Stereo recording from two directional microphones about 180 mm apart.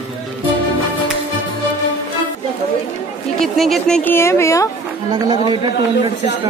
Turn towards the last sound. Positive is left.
turn(degrees=-25)  # may be behind; listen again after turning